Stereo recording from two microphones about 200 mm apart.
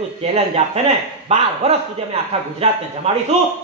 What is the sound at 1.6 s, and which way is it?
Speech, 30° right (ahead or behind).